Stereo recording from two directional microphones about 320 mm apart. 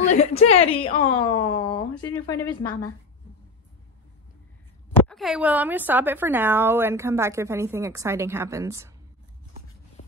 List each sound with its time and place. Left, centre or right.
0.0 s a woman's voice: left
4.9 s a woman's voice: centre